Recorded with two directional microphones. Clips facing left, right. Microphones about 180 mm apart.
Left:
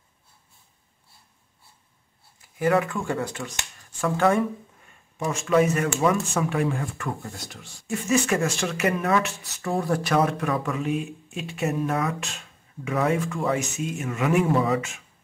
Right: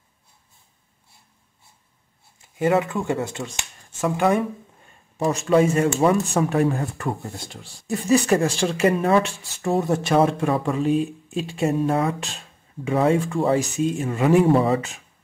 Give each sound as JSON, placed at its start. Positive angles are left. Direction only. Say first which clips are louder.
{"t": 2.4, "sound": "speech", "louder": "right 2 dB", "side_deg": -25}
{"t": 4.8, "sound": "speech", "louder": "right 6 dB", "side_deg": -35}